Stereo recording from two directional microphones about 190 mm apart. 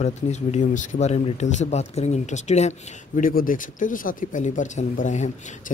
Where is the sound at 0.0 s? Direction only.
35° left (ahead or behind).